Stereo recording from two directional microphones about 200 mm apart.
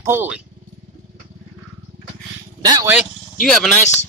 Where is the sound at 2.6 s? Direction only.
20° right (ahead or behind).